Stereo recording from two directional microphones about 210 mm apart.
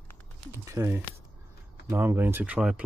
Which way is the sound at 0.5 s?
15° right (ahead or behind).